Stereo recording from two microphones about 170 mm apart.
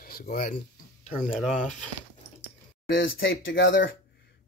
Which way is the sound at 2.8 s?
90° left.